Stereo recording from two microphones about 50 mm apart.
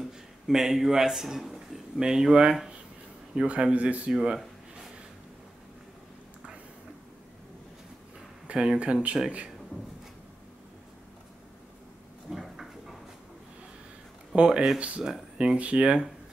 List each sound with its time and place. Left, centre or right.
0.5 s speech: centre; by 4.1 s right
4.1 s speech: centre
8.5 s speech: right
12.3 s a sound: centre
14.3 s speech: right